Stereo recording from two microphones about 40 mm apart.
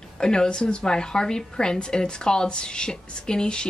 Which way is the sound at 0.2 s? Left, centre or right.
Centre.